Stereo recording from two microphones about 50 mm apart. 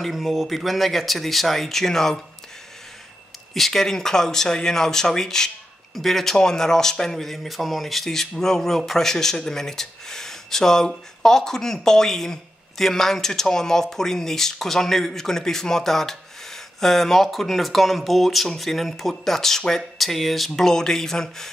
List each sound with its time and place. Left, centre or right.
0.0 s speech: centre
3.5 s speech: centre